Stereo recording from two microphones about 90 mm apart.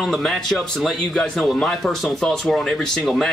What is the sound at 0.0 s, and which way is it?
A man's voice, 5° left (ahead or behind).